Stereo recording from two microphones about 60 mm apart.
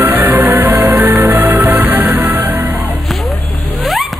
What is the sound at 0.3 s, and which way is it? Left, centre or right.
Music, right.